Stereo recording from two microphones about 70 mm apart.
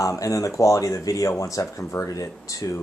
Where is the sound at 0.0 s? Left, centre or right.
Left.